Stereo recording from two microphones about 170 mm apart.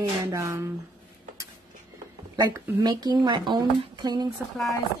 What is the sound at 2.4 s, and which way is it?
Speech, 20° right (ahead or behind).